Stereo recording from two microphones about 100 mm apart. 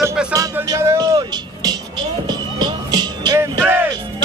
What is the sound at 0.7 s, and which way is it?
Music, 35° right (ahead or behind).